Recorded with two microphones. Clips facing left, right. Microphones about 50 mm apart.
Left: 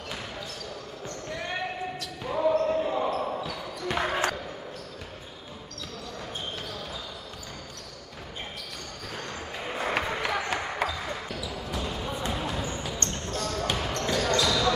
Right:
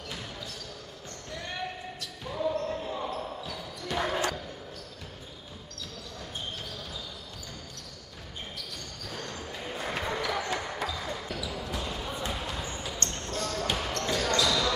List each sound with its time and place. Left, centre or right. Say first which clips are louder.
2.0 s basketball bounce: left 4 dB; left
3.9 s basketball bounce: left 2 dB; left
9.1 s basketball bounce: left 2 dB; left
10.1 s a sound: left 2 dB; left
10.5 s basketball bounce: left 3 dB; left
11.5 s basketball bounce: left 2 dB; centre